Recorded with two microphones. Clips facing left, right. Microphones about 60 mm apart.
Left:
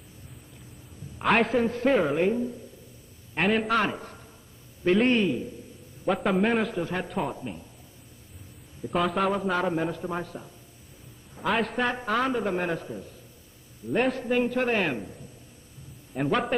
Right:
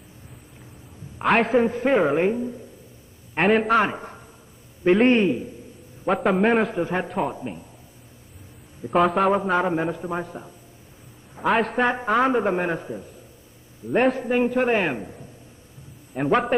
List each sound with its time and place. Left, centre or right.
1.2 s a man's voice: centre
1.5 s a man's voice: centre
3.3 s a man's voice: centre
3.7 s a man's voice: right
6.0 s a man's voice: centre
6.7 s a man's voice: right
7.1 s a man's voice: centre
7.3 s a man's voice: right
8.9 s a man's voice: centre
9.5 s a man's voice: right
11.4 s a man's voice: centre
11.8 s a man's voice: right